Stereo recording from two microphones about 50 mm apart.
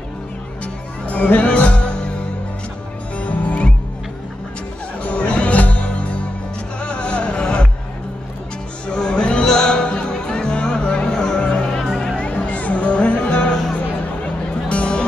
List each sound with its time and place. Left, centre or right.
1.0 s music: left
3.3 s music: left
5.0 s music: left
8.8 s music: centre
13.5 s music: centre
14.2 s music: left